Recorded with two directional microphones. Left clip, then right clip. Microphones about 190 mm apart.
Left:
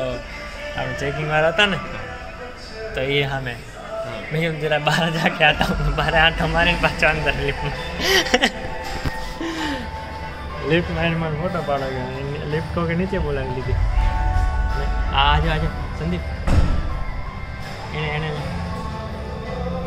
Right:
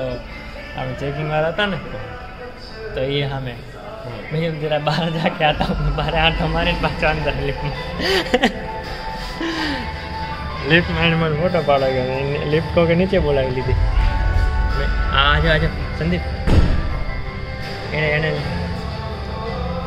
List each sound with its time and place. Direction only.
1.3 s a man's voice: 10° left (ahead or behind)
3.0 s a man's voice: centre (ahead or behind)
8.0 s speech: 20° right (ahead or behind)
9.4 s music: 5° left (ahead or behind)
10.7 s a man's voice: 5° right (ahead or behind)
15.1 s a man's voice: centre (ahead or behind)
17.9 s a man's voice: centre (ahead or behind)